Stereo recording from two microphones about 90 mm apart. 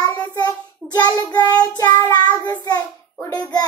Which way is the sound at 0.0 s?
50° left (ahead or behind).